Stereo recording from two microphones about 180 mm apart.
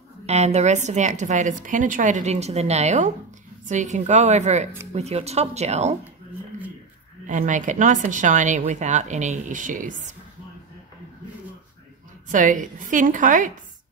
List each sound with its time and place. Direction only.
0.3 s a woman's voice: 40° right (ahead or behind)
7.2 s speech: 45° right (ahead or behind)
12.3 s speech: 45° right (ahead or behind)